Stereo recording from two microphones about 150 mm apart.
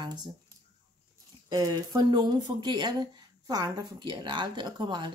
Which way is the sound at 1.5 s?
25° right (ahead or behind).